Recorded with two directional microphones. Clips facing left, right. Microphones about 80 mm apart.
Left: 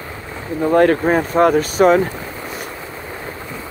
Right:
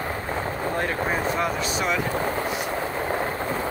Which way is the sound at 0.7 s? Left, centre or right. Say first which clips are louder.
Left 14 dB; left.